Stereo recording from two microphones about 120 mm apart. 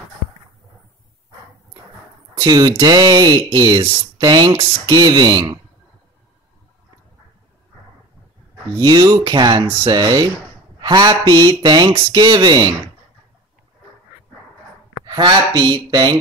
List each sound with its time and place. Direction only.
2.3 s speech: 30° right (ahead or behind)
8.7 s speech: 35° right (ahead or behind)
15.0 s speech: 35° right (ahead or behind)